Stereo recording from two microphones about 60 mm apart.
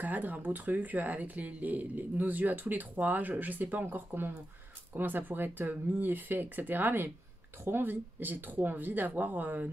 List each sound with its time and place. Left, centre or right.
0.0 s speech: right